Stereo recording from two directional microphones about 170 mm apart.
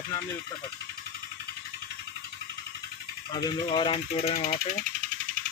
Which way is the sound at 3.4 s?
30° left (ahead or behind).